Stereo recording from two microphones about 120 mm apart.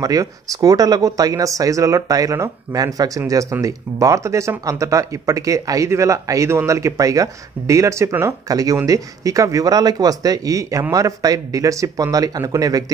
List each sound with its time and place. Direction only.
0.0 s speech: 30° right (ahead or behind)